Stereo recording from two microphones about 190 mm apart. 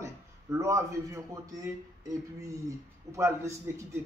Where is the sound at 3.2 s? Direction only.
15° right (ahead or behind).